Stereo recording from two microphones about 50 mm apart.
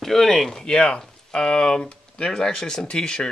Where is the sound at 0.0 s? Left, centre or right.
Centre.